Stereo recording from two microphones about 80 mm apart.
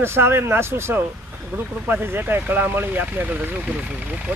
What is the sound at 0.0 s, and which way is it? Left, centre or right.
Speech, right.